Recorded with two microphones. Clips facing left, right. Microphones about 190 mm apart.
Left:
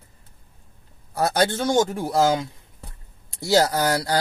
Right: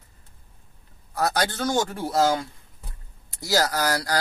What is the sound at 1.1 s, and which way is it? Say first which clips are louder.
Speech: left 4 dB; 25° left (ahead or behind).